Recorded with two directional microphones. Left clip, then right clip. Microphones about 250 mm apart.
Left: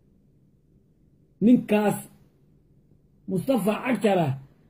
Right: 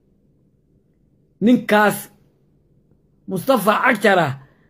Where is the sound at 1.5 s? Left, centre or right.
Right.